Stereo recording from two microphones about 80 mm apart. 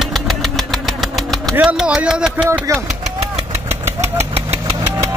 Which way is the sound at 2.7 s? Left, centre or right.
Right.